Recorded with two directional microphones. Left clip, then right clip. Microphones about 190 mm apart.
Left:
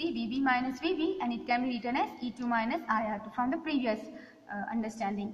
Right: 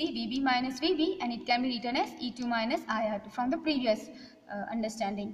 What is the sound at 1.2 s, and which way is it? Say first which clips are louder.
A woman's voice: right 1 dB; 55° right (ahead or behind).